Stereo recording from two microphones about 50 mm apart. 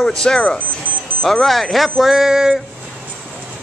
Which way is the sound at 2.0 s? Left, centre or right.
Centre.